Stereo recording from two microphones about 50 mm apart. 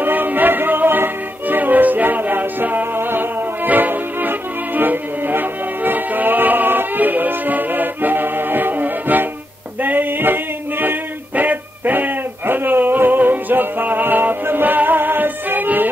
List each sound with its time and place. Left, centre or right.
0.0 s music: right
3.6 s music: right
9.8 s male singing: right